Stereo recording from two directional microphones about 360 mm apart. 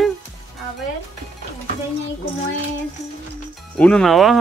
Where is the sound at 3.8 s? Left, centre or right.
Centre.